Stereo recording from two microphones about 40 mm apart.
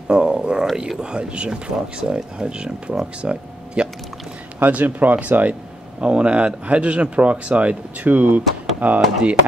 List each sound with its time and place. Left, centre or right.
0.1 s speech: right
4.6 s speech: right
5.9 s speech: right